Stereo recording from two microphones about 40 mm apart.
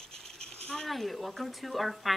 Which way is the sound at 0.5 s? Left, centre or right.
Centre.